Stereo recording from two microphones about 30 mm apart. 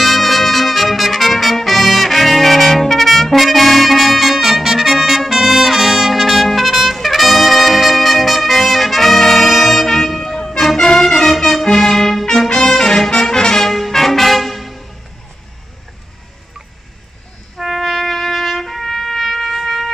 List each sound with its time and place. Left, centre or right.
0.0 s trumpet: centre
9.2 s brass instrument: centre
11.6 s trumpet: centre
12.5 s music: centre
13.7 s music: centre
17.6 s trumpet: centre